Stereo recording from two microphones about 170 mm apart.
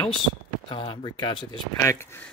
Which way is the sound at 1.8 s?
15° left (ahead or behind).